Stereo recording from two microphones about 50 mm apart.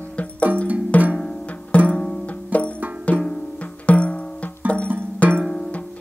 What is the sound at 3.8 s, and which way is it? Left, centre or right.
Music, left.